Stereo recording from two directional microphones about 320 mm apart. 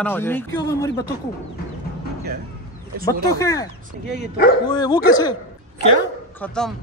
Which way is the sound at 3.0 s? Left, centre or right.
Centre.